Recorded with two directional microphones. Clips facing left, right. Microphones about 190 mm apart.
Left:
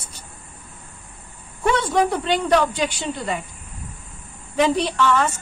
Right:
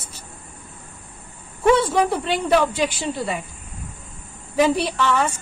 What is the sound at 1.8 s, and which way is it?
A woman's voice, 5° right (ahead or behind).